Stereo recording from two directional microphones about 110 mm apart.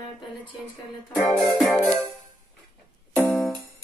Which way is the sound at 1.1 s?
5° left (ahead or behind).